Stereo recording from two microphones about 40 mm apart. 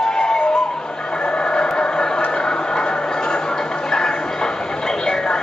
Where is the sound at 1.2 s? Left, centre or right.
Left.